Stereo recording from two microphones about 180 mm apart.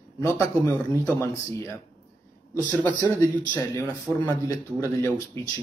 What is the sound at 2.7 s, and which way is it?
Speech, 10° left (ahead or behind).